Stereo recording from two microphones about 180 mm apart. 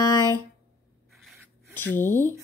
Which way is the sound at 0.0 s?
15° left (ahead or behind).